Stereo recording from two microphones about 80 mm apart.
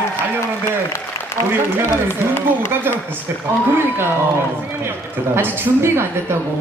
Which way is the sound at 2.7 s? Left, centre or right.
Right.